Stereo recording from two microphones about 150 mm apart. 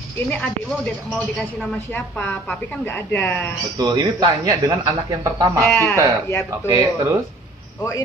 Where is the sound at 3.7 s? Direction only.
30° right (ahead or behind).